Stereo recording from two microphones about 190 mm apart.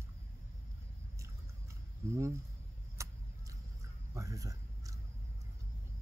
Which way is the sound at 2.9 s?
15° right (ahead or behind).